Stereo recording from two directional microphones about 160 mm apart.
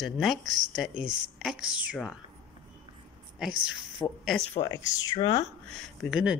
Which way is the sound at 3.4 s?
5° right (ahead or behind).